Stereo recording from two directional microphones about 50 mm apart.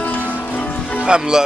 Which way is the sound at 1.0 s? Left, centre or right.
Centre.